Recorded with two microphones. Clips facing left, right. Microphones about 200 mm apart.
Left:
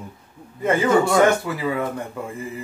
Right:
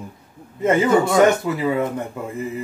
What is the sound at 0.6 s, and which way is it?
Speech, 20° right (ahead or behind).